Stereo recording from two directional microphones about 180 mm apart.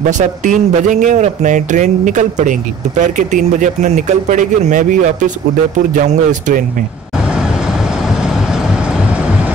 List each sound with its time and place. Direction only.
0.2 s speech: 45° right (ahead or behind)